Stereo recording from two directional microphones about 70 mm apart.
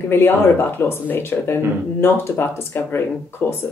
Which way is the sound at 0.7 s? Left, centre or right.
Left.